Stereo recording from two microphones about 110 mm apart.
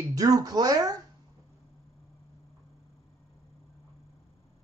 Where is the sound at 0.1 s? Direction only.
35° right (ahead or behind).